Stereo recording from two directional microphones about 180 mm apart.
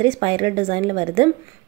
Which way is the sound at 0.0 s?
25° right (ahead or behind).